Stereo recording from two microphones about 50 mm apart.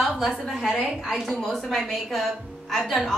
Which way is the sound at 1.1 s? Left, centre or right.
Centre.